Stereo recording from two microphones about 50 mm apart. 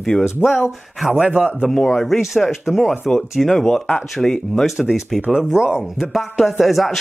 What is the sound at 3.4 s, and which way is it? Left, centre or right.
Speech, centre.